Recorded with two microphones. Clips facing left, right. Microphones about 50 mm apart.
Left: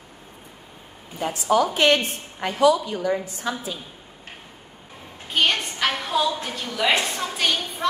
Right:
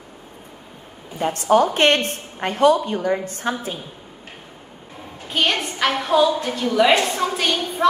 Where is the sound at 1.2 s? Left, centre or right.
Right.